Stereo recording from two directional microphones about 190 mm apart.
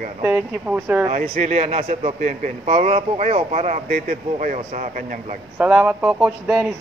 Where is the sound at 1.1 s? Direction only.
35° right (ahead or behind).